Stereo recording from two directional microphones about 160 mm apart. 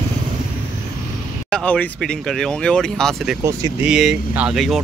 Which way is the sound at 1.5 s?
5° left (ahead or behind).